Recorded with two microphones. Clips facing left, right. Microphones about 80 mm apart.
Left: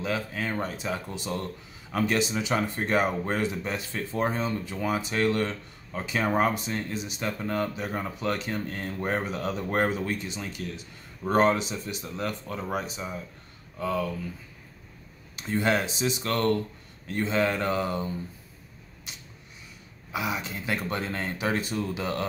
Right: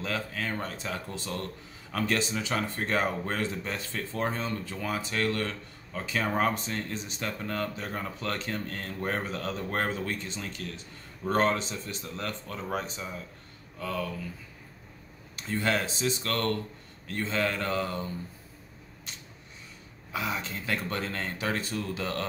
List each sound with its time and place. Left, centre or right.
0.0 s speech: centre
15.3 s speech: centre
19.1 s a sound: centre
20.1 s speech: centre